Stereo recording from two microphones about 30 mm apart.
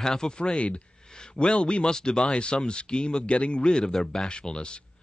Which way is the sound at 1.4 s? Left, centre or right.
Left.